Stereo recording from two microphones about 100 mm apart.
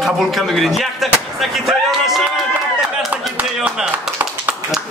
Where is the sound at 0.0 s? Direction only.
Centre (ahead or behind).